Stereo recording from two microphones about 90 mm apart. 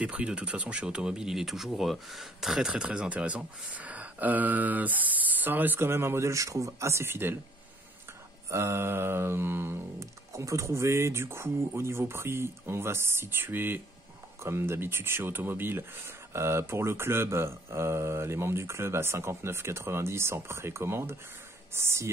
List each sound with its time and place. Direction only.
0.0 s speech: 15° right (ahead or behind)
8.5 s speech: 30° right (ahead or behind)
10.3 s speech: 35° right (ahead or behind)